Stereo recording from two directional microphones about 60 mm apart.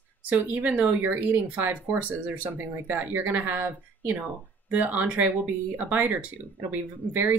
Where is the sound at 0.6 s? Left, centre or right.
Right.